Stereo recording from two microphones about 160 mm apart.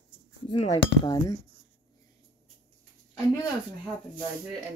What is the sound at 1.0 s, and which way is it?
Speech, 25° left (ahead or behind).